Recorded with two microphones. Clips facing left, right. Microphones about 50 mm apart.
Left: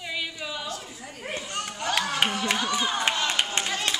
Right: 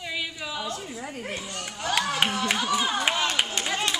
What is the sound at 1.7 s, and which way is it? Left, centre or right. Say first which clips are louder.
Speech: right 2 dB; centre.